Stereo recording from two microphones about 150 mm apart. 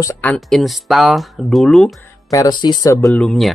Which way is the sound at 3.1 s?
5° left (ahead or behind).